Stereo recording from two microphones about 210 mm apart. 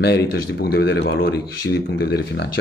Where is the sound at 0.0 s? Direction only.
50° left (ahead or behind).